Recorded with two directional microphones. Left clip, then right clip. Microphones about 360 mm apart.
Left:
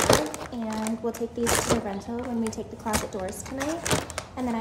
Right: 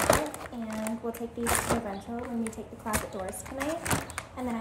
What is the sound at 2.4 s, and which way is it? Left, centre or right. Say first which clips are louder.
Speech: left 5 dB; centre.